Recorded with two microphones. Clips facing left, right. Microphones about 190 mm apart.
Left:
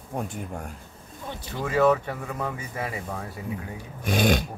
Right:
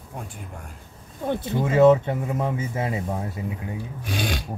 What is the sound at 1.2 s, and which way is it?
Speech, 55° right (ahead or behind).